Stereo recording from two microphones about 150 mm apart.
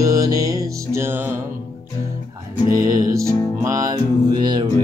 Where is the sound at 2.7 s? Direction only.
25° right (ahead or behind).